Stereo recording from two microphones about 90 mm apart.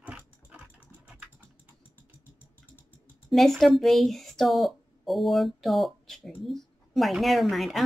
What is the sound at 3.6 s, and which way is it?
A woman's voice, centre (ahead or behind).